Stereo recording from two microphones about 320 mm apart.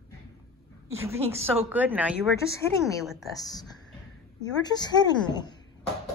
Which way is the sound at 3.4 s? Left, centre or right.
Centre.